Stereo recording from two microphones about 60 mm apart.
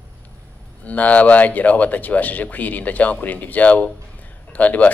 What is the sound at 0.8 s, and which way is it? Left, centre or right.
Speech, left.